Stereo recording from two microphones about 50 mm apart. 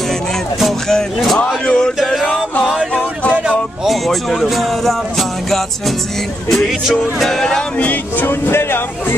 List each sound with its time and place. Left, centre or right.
0.8 s music: centre
1.4 s a sound: centre
3.4 s music: centre
6.9 s music: centre
7.8 s speech: left
8.3 s speech: left